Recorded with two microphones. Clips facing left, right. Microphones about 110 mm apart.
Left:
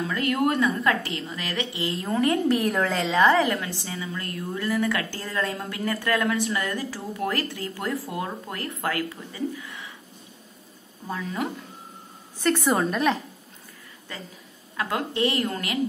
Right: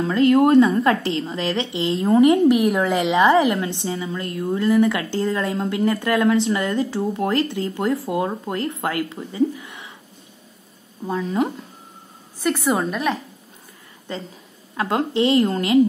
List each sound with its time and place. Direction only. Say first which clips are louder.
0.0 s a woman's voice: right 9 dB; 25° right (ahead or behind)
11.1 s a woman's voice: right 8 dB; 20° right (ahead or behind)
12.4 s a woman's voice: right 2 dB; 5° right (ahead or behind)
14.1 s a woman's voice: right 8 dB; 25° right (ahead or behind)